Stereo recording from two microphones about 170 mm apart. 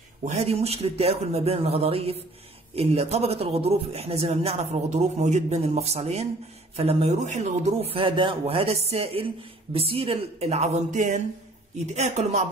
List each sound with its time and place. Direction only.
0.2 s a man's voice: 40° right (ahead or behind)